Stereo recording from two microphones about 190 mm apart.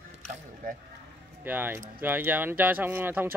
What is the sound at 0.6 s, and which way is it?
Speech, 45° right (ahead or behind).